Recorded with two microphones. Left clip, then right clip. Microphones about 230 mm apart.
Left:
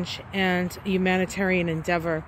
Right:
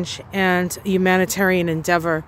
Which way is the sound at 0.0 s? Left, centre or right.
Centre.